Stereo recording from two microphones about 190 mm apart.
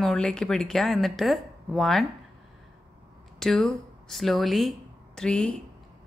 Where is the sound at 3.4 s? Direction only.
5° left (ahead or behind).